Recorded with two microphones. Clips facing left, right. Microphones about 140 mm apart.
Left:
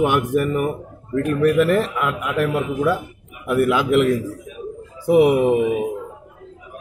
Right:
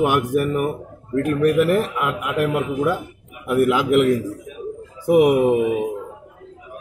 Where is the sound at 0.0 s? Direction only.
10° right (ahead or behind).